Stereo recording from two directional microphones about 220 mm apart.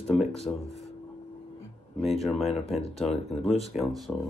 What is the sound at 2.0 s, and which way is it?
Speech, centre (ahead or behind).